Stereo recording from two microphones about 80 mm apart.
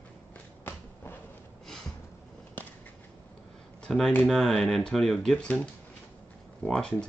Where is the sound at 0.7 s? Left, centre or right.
Left.